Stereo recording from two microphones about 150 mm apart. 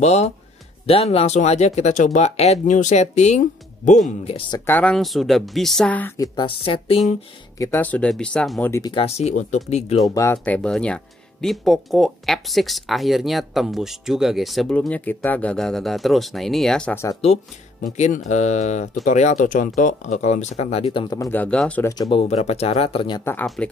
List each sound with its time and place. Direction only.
0.0 s speech: 45° left (ahead or behind)
4.6 s speech: 10° left (ahead or behind)
6.1 s a woman's voice: 25° left (ahead or behind)
6.6 s speech: 40° left (ahead or behind)
7.5 s speech: 20° left (ahead or behind)
7.8 s speech: 10° left (ahead or behind)
9.0 s speech: 45° left (ahead or behind)
10.0 s speech: 20° left (ahead or behind); by 16.9 s 5° left (ahead or behind)
16.9 s a woman's voice: 20° left (ahead or behind)
17.9 s speech: 50° left (ahead or behind); by 21.2 s 35° left (ahead or behind)
21.2 s speech: 10° left (ahead or behind)
21.8 s a woman's voice: 20° left (ahead or behind)
22.1 s speech: 45° left (ahead or behind)
23.4 s speech: centre (ahead or behind)